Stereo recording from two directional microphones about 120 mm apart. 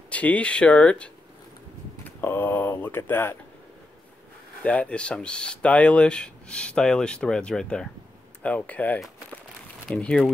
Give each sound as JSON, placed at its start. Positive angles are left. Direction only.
{"t": 0.1, "sound": "speech", "side_deg": 10}
{"t": 4.6, "sound": "speech", "side_deg": 10}